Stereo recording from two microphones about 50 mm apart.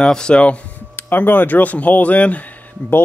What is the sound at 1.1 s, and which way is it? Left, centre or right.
Speech, left.